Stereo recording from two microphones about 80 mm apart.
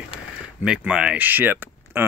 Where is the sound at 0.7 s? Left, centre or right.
Centre.